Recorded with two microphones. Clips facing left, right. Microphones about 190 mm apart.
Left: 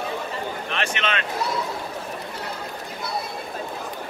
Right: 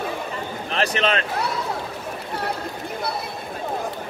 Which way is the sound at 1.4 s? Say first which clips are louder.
Even; 65° right (ahead or behind).